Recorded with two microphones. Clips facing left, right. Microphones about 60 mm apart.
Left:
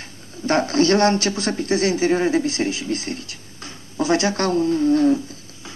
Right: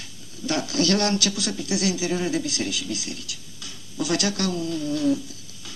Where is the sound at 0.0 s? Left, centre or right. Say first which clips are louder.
Left 5 dB; left.